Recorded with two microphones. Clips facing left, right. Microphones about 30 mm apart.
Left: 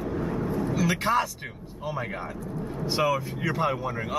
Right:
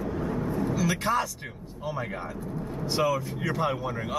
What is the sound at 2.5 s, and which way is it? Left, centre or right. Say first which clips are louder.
Speech: left 1 dB; centre.